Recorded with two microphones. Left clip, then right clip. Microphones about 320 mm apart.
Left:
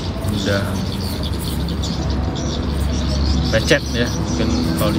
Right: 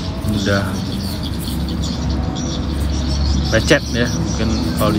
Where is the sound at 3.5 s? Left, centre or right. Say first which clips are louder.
Right 2 dB; centre.